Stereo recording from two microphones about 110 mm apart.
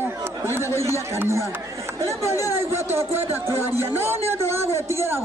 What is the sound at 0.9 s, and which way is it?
Speech, 25° right (ahead or behind).